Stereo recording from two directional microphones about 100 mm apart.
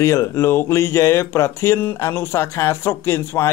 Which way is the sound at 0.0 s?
30° left (ahead or behind).